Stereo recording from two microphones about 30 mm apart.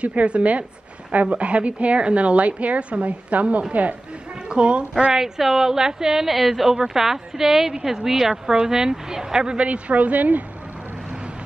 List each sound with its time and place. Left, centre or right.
0.0 s a woman's voice: right
4.5 s speech: right
5.4 s a woman's voice: centre
6.2 s a woman's voice: centre; by 9.6 s right
9.6 s a woman's voice: right